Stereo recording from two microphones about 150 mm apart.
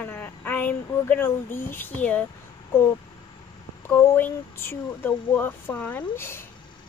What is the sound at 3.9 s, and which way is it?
A woman's voice, 15° left (ahead or behind).